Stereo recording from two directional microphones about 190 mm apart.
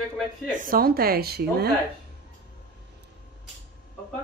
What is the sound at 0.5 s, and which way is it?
A woman's voice, 45° right (ahead or behind).